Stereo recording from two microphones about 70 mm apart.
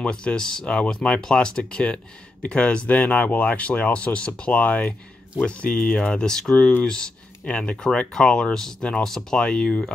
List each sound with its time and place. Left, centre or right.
0.0 s speech: centre